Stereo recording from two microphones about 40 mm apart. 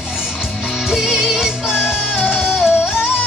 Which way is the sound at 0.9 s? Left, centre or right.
Centre.